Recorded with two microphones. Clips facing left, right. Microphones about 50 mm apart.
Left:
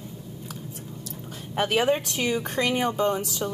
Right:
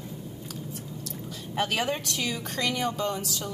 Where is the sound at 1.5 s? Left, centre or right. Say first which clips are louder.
Left 5 dB; left.